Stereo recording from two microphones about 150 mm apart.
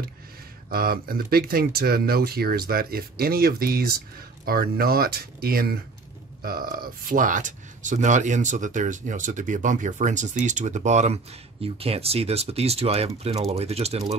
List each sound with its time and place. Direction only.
0.7 s speech: 85° right; by 14.1 s 45° right (ahead or behind)